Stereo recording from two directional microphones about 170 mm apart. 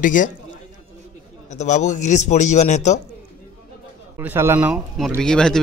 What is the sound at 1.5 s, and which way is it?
A man's voice, 45° left (ahead or behind).